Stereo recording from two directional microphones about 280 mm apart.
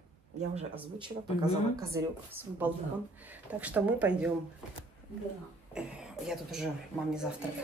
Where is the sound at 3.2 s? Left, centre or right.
Centre.